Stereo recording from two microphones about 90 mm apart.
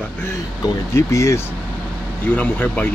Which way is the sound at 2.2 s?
20° left (ahead or behind).